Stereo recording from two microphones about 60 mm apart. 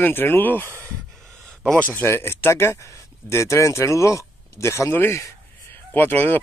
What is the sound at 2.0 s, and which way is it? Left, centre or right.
Speech, left.